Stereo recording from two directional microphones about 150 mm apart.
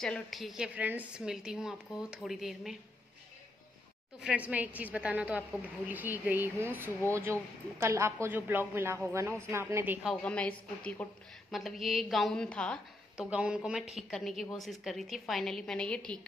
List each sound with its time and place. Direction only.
0.0 s a woman's voice: centre (ahead or behind)
4.2 s speech: 10° right (ahead or behind)
10.0 s a woman's voice: 5° left (ahead or behind)
13.2 s a woman's voice: 5° right (ahead or behind)